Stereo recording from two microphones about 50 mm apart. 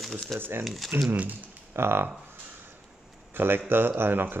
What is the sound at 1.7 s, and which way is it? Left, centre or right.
Speech, right.